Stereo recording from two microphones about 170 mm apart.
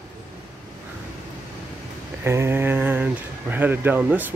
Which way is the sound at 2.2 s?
15° right (ahead or behind).